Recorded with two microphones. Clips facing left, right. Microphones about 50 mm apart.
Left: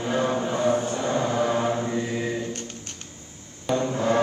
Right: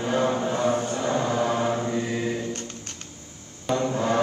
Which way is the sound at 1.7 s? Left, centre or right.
Left.